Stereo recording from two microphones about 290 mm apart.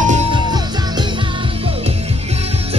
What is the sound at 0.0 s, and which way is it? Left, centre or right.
Music, right.